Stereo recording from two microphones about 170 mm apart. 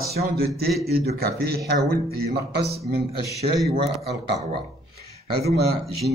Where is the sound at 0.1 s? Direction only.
65° right (ahead or behind).